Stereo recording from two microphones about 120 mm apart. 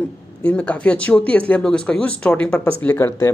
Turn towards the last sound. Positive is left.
turn(degrees=20)  # may be behind; listen again after turning